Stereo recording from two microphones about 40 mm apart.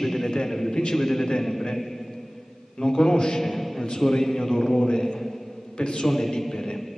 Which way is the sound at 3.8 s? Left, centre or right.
Centre.